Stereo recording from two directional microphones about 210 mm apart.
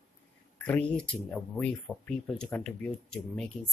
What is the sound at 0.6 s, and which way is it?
Speech, 10° left (ahead or behind).